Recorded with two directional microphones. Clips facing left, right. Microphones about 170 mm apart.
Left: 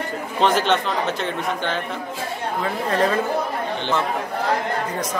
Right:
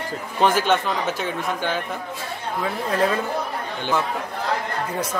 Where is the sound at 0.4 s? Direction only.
10° right (ahead or behind).